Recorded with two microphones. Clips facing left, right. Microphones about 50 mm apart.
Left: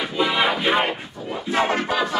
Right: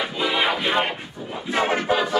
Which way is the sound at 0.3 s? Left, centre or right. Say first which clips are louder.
Left 1 dB; centre.